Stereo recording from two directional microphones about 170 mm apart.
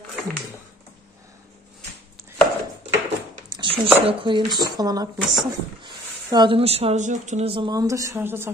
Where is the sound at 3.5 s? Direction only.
30° right (ahead or behind).